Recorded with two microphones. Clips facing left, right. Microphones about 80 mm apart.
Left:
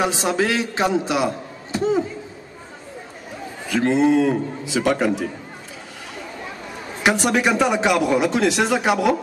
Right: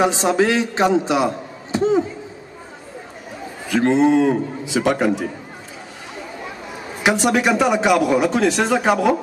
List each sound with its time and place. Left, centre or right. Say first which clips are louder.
0.0 s a man's voice: right 4 dB; centre
0.8 s a man's voice: right 3 dB; centre
3.9 s a man's voice: right 2 dB; centre
7.0 s a man's voice: right 1 dB; centre